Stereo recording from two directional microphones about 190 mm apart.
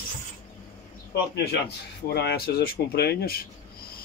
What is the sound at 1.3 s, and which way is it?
Speech, 55° left (ahead or behind).